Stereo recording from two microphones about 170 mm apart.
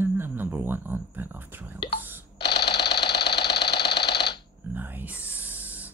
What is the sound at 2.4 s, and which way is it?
Sewing machine, 75° left (ahead or behind).